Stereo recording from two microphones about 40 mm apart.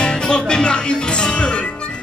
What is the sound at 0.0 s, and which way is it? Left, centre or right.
Music, left.